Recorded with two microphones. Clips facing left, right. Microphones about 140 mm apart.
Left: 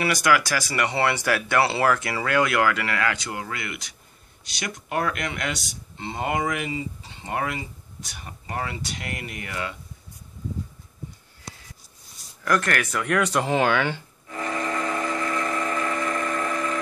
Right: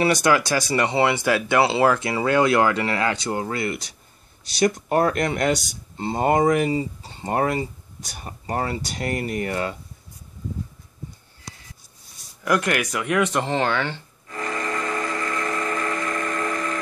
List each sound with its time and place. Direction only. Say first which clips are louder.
0.0 s speech: right 3 dB; 25° right (ahead or behind)
12.4 s speech: right 2 dB; 10° right (ahead or behind)
13.4 s music: left 1 dB; 10° left (ahead or behind)